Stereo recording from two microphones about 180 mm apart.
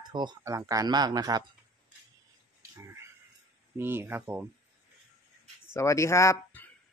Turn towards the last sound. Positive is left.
turn(degrees=15)  # may be behind; listen again after turning